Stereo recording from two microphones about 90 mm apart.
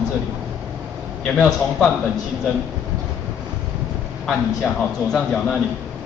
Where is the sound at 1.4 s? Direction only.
5° left (ahead or behind).